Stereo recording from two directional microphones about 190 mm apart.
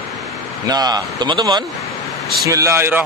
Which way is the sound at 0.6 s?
20° right (ahead or behind).